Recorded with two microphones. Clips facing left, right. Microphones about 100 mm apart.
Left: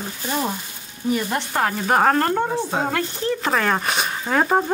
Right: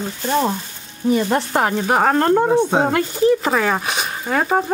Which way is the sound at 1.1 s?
25° right (ahead or behind).